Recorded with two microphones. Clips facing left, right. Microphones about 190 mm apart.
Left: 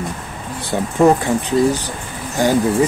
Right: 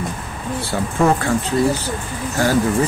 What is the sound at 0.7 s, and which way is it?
Speech, 15° left (ahead or behind).